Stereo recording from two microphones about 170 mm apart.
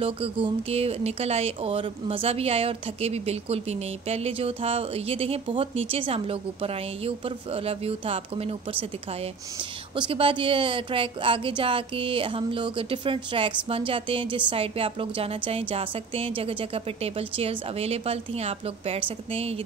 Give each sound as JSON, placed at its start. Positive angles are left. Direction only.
{"t": 0.0, "sound": "speech", "side_deg": -35}
{"t": 9.9, "sound": "speech", "side_deg": -30}